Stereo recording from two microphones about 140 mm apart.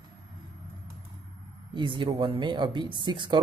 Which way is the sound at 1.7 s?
35° right (ahead or behind).